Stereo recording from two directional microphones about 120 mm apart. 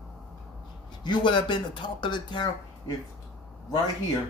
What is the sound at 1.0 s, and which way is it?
Speech, 40° left (ahead or behind).